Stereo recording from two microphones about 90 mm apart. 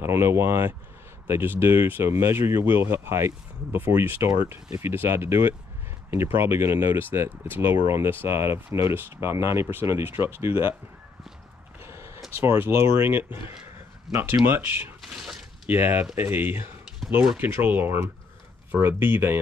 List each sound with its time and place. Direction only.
0.0 s speech: 30° right (ahead or behind)
11.8 s a sound: 30° right (ahead or behind)
12.4 s speech: 25° right (ahead or behind)